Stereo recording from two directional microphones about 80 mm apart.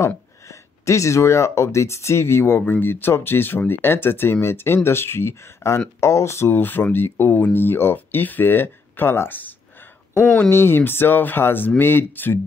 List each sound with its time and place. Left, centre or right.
0.0 s speech: left
10.5 s speech: left